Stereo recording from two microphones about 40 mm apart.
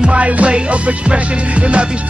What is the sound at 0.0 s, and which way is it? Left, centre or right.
Music, right.